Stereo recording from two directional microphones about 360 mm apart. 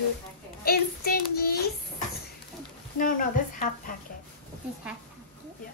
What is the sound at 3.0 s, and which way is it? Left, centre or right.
Child singing, left.